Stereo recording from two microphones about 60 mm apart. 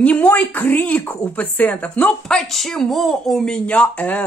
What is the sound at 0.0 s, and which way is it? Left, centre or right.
Speech, left.